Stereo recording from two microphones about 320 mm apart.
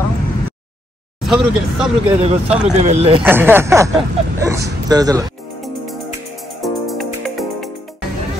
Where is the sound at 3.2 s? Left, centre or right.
Centre.